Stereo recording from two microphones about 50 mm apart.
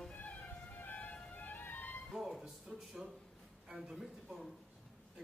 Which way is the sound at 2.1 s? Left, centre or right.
Centre.